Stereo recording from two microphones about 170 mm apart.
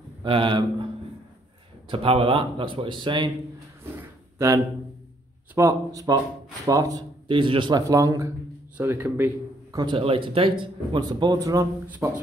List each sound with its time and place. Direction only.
0.2 s speech: 30° right (ahead or behind)
1.9 s speech: 30° right (ahead or behind)
5.5 s speech: 15° right (ahead or behind)
9.8 s speech: 30° right (ahead or behind); by 12.2 s 10° right (ahead or behind)